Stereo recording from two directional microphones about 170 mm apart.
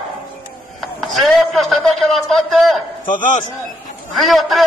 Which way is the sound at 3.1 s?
50° left (ahead or behind).